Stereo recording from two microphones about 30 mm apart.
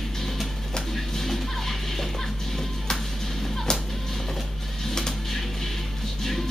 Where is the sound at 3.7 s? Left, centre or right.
Left.